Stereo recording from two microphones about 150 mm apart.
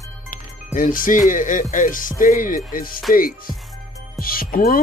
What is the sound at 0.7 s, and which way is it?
Speech, 65° left (ahead or behind).